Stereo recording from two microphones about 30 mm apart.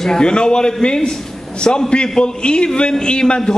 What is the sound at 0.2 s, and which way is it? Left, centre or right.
A man's voice, left.